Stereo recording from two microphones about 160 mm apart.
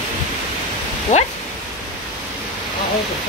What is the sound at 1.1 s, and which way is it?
Speech, 50° left (ahead or behind).